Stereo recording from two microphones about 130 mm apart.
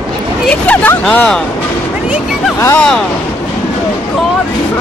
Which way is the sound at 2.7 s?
5° left (ahead or behind).